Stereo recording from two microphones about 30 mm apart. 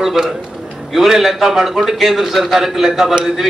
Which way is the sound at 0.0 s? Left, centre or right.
Centre.